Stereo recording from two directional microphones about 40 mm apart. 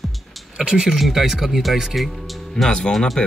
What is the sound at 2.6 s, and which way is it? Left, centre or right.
Speech, left.